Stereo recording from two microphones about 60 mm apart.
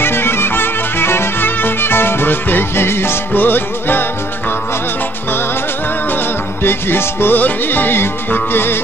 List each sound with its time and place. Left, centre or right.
0.0 s music: left
6.6 s music: left